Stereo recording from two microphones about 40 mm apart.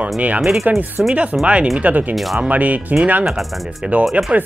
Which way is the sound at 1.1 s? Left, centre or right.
Right.